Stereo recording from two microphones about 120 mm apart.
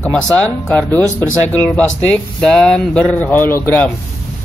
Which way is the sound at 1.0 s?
25° right (ahead or behind).